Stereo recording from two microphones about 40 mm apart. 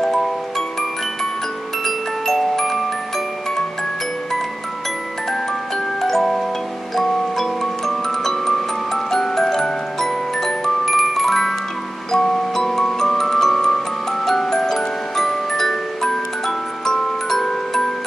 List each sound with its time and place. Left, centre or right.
0.0 s music: centre
1.9 s music: centre
5.9 s tick-tock: centre
7.0 s glockenspiel: centre
14.2 s music: centre